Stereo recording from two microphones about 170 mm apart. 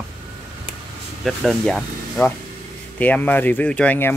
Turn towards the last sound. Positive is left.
turn(degrees=10)  # may be behind; listen again after turning